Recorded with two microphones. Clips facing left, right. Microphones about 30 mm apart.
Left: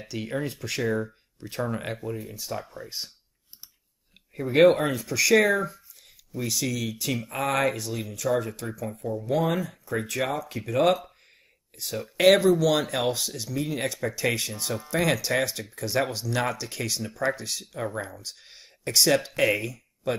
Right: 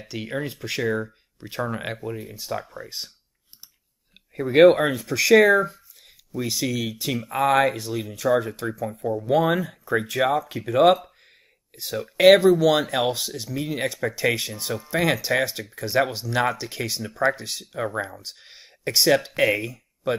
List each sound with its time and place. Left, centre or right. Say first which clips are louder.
0.1 s speech: right 1 dB; centre
4.3 s speech: right 4 dB; centre
7.4 s speech: right 6 dB; right
8.3 s speech: right 5 dB; centre
9.0 s speech: right 5 dB; right
10.0 s speech: right 7 dB; centre
11.9 s speech: right 5 dB; centre